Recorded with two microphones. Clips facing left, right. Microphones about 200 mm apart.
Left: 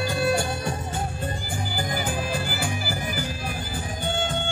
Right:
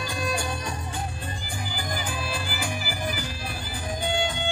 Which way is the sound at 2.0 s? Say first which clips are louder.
Left 4 dB; 45° left (ahead or behind).